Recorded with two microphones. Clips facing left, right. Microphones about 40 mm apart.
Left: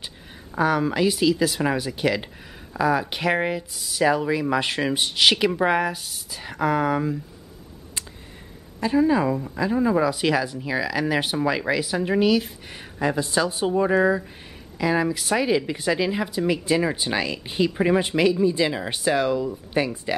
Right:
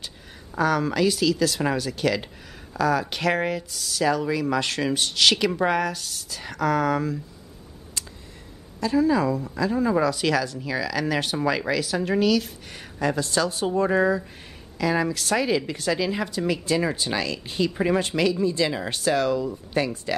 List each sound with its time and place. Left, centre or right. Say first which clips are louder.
0.6 s speech: left 1 dB; centre
8.7 s speech: left 1 dB; left